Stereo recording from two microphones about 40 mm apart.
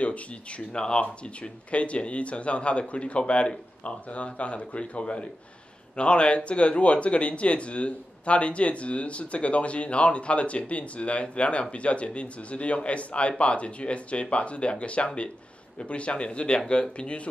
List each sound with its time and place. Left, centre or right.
0.0 s speech: left